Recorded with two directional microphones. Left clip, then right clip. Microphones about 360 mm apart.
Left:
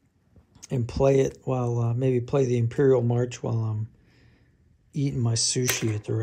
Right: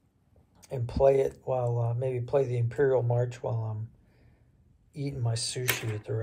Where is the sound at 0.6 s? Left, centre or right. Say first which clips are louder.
Left 1 dB; left.